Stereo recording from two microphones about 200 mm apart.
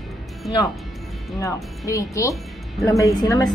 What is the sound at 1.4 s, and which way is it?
A woman's voice, 15° left (ahead or behind).